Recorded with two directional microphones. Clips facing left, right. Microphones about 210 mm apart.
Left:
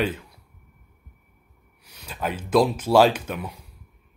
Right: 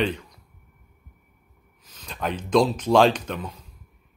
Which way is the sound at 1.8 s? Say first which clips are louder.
Even; 10° left (ahead or behind).